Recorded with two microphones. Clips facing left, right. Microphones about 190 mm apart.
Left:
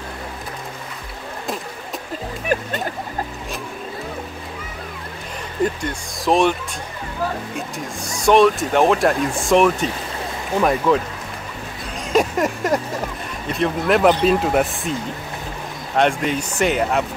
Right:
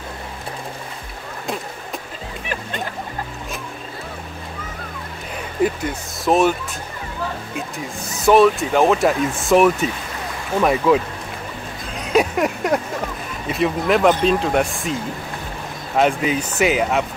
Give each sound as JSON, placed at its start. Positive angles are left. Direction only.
{"t": 2.4, "sound": "music", "side_deg": 45}
{"t": 5.6, "sound": "speech", "side_deg": -5}
{"t": 7.5, "sound": "speech", "side_deg": -5}
{"t": 12.1, "sound": "a sound", "side_deg": 0}
{"t": 13.5, "sound": "speech", "side_deg": 0}
{"t": 16.0, "sound": "speech", "side_deg": -5}